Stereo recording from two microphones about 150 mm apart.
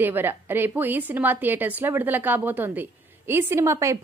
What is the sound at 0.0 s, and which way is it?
A woman's voice, 15° right (ahead or behind).